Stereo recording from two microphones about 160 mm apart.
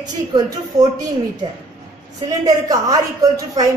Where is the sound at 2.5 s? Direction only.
20° right (ahead or behind).